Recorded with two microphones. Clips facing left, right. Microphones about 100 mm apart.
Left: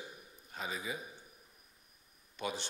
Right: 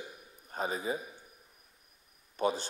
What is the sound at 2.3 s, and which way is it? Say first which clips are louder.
Speech: right 9 dB; 40° right (ahead or behind).